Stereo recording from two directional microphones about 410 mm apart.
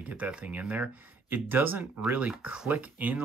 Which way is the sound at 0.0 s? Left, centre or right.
Centre.